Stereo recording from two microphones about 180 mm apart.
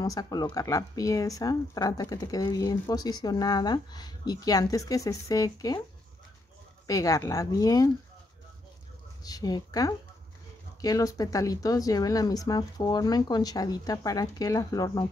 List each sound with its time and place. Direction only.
0.0 s speech: 20° left (ahead or behind)
6.9 s speech: 20° left (ahead or behind)
9.2 s speech: 20° left (ahead or behind)